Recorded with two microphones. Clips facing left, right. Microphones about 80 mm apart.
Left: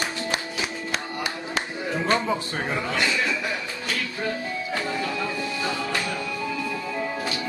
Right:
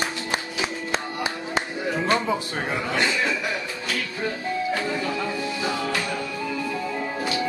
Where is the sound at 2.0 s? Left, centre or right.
Centre.